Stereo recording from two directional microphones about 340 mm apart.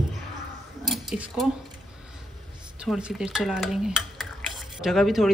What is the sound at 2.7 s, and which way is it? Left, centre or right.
A woman's voice, centre.